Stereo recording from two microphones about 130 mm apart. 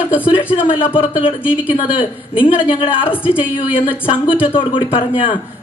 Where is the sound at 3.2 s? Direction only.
10° right (ahead or behind).